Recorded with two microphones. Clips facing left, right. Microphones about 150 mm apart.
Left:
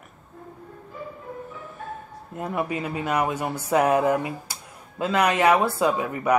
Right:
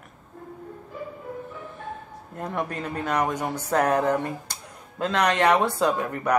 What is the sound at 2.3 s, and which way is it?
Speech, 5° left (ahead or behind).